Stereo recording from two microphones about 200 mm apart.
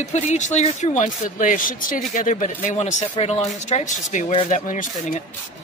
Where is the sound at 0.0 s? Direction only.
35° left (ahead or behind).